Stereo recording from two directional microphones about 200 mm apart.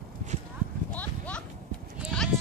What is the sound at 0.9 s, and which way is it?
Clip-clop, 5° left (ahead or behind).